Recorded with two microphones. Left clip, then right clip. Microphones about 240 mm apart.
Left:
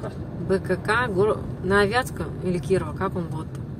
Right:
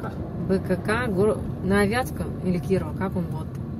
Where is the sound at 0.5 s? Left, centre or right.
Left.